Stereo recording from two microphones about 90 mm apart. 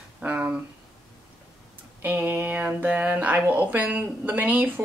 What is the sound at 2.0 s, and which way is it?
Speech, 15° right (ahead or behind).